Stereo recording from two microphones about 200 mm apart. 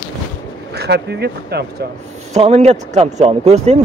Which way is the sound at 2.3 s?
30° right (ahead or behind).